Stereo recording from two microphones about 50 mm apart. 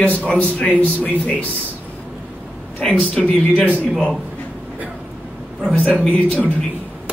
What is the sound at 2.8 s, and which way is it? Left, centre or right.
Speech, centre.